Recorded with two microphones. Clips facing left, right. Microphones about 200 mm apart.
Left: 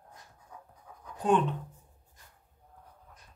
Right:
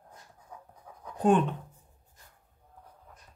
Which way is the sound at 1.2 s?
50° right (ahead or behind).